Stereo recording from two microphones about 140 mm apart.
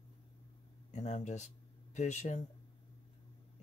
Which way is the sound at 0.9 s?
55° left (ahead or behind).